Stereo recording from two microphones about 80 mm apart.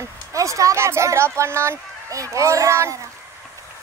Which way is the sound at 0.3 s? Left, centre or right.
Right.